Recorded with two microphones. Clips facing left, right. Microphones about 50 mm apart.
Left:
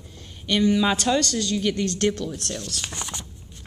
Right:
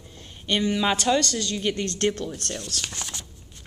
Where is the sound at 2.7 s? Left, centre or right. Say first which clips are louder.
Left 1 dB; centre.